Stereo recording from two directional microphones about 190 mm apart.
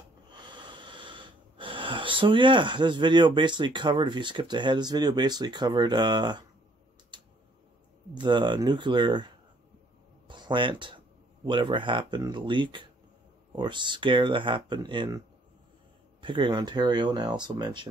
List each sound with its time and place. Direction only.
0.3 s wheeze: 25° right (ahead or behind)
7.1 s tick: 25° right (ahead or behind)
8.1 s speech: 25° right (ahead or behind)